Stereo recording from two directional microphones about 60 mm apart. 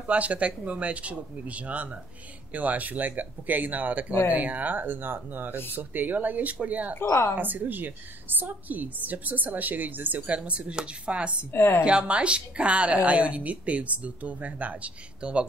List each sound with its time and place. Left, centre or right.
0.0 s a woman's voice: right
7.0 s a woman's voice: left
7.3 s a woman's voice: right
11.5 s a woman's voice: left
11.8 s a woman's voice: centre